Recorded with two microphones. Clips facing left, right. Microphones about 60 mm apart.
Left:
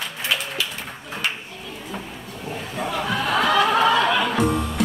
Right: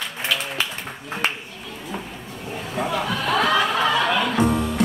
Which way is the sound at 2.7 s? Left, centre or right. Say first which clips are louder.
Right 3 dB; centre.